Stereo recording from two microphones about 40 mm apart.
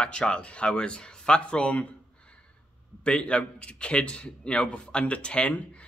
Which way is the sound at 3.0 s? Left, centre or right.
Left.